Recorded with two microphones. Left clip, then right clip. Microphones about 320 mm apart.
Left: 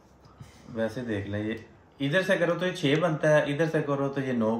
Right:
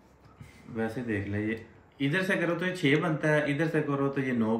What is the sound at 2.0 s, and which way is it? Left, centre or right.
Speech, centre.